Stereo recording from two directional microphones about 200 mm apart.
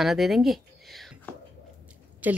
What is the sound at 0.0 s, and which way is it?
Speech, centre (ahead or behind).